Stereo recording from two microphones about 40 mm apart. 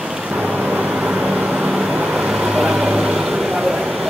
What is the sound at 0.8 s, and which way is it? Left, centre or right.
Vehicle, right.